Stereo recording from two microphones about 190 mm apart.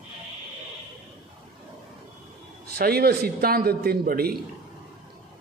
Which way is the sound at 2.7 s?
55° right (ahead or behind).